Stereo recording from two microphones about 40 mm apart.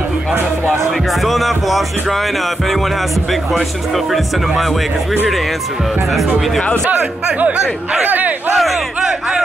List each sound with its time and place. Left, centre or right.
0.3 s music: right
1.2 s speech: centre
3.5 s speech: centre
8.0 s speech: right